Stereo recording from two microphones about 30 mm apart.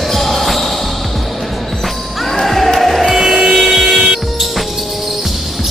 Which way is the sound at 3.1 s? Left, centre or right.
Centre.